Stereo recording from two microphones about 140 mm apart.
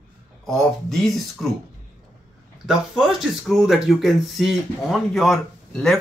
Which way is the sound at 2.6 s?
Centre (ahead or behind).